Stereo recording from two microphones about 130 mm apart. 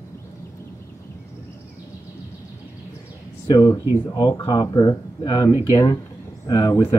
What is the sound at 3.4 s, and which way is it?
Speech, 30° left (ahead or behind).